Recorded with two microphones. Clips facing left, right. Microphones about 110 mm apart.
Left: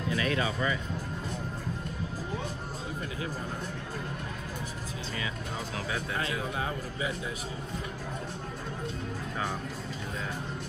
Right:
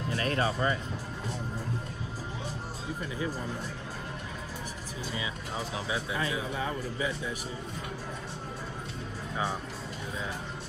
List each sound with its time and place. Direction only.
0.2 s speech: 40° right (ahead or behind)